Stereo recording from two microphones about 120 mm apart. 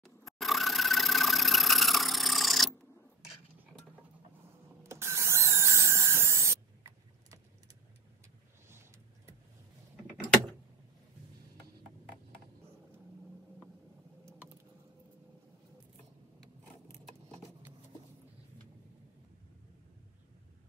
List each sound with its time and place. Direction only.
0.0 s engine: centre (ahead or behind)
4.8 s a sound: 25° right (ahead or behind)
8.6 s vehicle: 20° right (ahead or behind)